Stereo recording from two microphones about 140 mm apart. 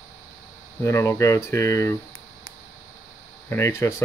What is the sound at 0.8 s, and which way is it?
Speech, 20° left (ahead or behind).